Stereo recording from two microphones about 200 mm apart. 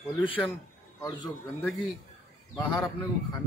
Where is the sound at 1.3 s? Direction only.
Centre (ahead or behind).